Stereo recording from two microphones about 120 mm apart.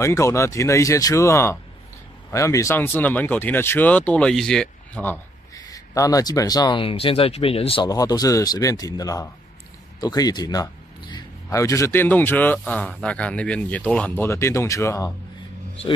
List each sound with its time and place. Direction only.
0.0 s speech: 25° left (ahead or behind); by 5.0 s 5° left (ahead or behind)
5.5 s speech: 30° left (ahead or behind)
6.8 s speech: 50° left (ahead or behind)
7.8 s speech: 30° left (ahead or behind)
9.9 s a sound: 35° left (ahead or behind)
11.5 s speech: 25° left (ahead or behind)